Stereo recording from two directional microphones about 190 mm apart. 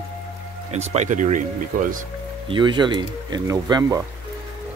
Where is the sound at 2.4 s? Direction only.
25° right (ahead or behind).